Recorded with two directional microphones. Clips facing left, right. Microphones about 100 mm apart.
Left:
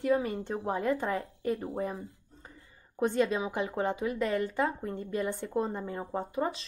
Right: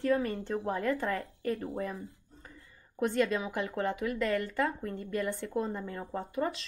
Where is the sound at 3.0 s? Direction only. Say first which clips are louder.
Left 1 dB; 25° left (ahead or behind).